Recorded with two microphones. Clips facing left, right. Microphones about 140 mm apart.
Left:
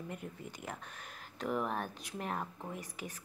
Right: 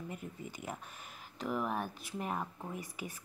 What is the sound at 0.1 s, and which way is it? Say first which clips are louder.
Speech: even; centre (ahead or behind).